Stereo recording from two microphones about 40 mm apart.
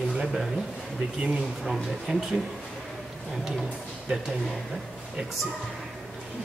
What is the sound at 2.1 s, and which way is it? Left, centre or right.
Speech, right.